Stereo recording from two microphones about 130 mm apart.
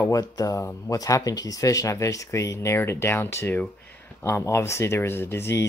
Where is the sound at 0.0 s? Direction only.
25° left (ahead or behind).